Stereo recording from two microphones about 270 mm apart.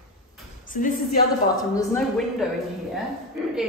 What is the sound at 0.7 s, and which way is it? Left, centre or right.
Speech, left.